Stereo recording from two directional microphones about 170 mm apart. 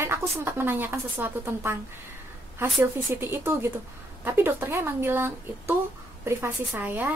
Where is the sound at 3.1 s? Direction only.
15° right (ahead or behind).